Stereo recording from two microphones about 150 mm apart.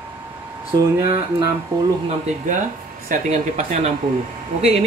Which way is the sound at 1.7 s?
20° right (ahead or behind).